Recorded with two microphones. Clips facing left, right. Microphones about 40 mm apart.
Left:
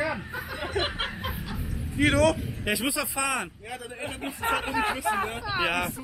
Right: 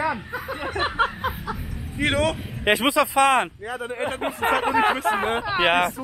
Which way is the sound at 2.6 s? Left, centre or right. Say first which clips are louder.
Right 9 dB; right.